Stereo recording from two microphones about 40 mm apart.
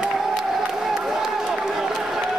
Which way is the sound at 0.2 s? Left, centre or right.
Centre.